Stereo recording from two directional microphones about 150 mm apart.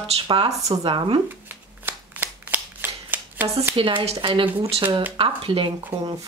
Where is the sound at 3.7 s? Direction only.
35° right (ahead or behind).